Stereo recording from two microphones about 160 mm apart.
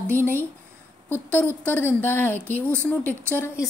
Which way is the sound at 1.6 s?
10° left (ahead or behind).